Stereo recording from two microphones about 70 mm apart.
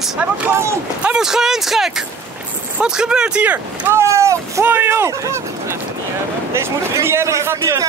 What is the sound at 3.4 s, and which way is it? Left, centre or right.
Speech, right.